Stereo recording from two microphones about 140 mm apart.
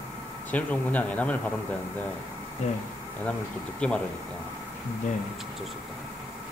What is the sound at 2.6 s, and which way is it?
Speech, 50° left (ahead or behind).